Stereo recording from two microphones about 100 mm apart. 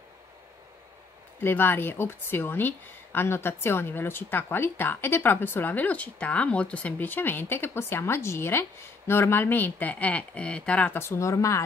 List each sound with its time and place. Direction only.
1.4 s a woman's voice: 20° left (ahead or behind)
11.0 s a woman's voice: 30° left (ahead or behind)